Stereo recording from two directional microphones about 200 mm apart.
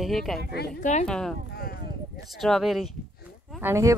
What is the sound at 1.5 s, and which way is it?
Speech, 50° left (ahead or behind).